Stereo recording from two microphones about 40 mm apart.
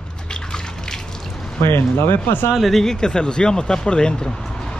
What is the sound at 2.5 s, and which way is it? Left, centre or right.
Speech, centre.